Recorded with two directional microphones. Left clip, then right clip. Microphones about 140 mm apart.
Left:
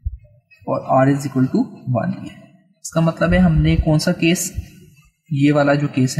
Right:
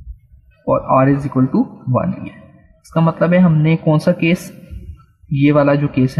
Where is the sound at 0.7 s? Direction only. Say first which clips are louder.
Right 3 dB; 30° right (ahead or behind).